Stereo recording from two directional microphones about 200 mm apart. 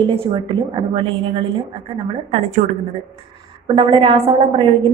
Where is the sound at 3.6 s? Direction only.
25° right (ahead or behind).